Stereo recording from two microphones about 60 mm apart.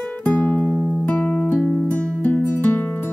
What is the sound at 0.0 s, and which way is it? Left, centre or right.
Music, left.